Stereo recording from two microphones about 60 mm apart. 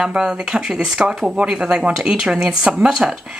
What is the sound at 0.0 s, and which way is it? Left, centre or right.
Speech, centre.